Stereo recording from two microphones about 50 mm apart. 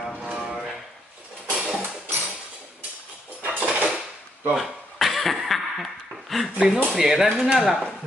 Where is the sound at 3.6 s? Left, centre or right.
Right.